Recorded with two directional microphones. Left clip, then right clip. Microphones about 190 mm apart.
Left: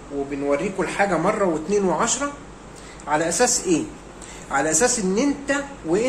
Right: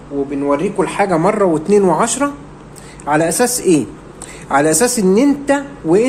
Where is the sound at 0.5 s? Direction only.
45° right (ahead or behind).